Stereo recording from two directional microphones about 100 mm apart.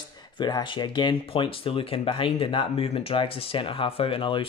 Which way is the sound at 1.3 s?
65° left (ahead or behind).